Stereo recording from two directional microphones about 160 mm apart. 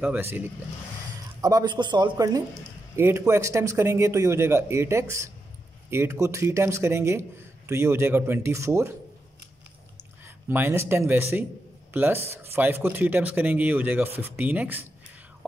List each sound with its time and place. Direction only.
0.0 s a man's voice: 10° right (ahead or behind)
1.4 s a man's voice: 25° right (ahead or behind)
10.2 s a man's voice: 15° right (ahead or behind)